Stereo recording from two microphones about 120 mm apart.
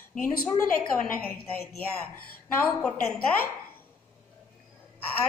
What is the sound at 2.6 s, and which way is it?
Speech, 15° left (ahead or behind).